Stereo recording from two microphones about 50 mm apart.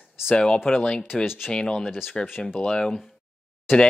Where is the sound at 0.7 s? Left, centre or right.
Centre.